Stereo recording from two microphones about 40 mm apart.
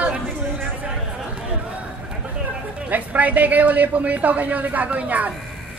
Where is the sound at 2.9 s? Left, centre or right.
Right.